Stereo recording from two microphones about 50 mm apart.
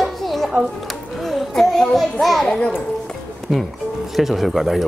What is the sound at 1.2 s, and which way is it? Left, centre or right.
Children playing, centre.